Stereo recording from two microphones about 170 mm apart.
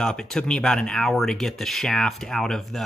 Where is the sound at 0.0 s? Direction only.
5° left (ahead or behind).